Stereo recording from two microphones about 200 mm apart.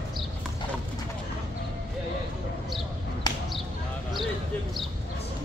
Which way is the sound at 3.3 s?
20° left (ahead or behind).